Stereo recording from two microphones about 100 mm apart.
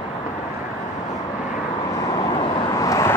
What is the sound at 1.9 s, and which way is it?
Vehicle, 35° left (ahead or behind).